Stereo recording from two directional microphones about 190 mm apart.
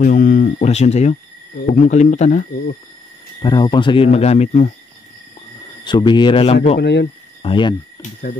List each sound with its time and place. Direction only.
0.0 s speech: 45° left (ahead or behind)
3.4 s speech: 25° left (ahead or behind)
5.9 s speech: 25° left (ahead or behind)
6.8 s speech: 60° left (ahead or behind)
7.4 s speech: 25° left (ahead or behind)